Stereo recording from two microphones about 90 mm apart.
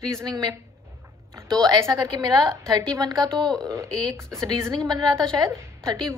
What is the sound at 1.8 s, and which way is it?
A woman's voice, 40° right (ahead or behind).